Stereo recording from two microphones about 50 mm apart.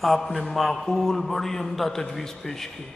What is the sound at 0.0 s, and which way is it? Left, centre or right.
A man's voice, centre.